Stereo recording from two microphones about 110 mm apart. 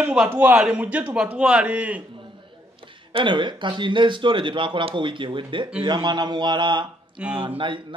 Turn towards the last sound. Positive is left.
turn(degrees=-50)  # may be behind; listen again after turning